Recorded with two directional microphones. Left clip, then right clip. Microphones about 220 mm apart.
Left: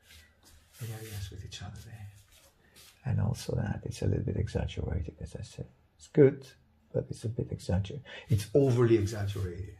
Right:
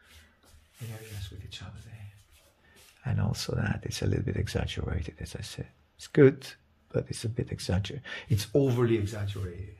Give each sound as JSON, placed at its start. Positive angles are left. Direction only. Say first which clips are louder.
{"t": 3.0, "sound": "speech", "louder": "right 4 dB", "side_deg": -20}
{"t": 8.5, "sound": "speech", "louder": "left 1 dB", "side_deg": -5}
{"t": 9.1, "sound": "speech", "louder": "even", "side_deg": 5}